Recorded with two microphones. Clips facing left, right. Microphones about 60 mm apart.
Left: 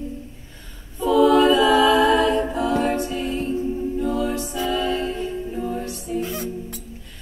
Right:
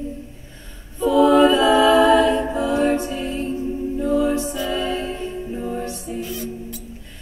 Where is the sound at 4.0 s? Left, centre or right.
Right.